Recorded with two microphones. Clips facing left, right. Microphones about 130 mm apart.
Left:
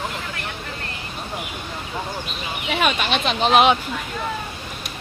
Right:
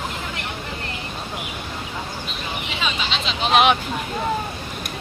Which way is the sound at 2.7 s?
60° left (ahead or behind).